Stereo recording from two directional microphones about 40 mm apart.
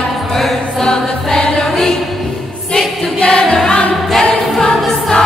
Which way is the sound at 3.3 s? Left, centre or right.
Left.